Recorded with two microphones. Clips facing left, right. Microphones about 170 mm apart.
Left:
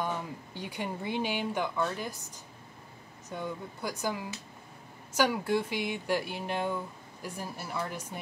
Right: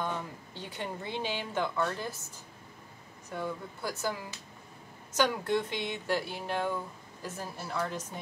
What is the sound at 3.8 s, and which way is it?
Speech, 15° left (ahead or behind).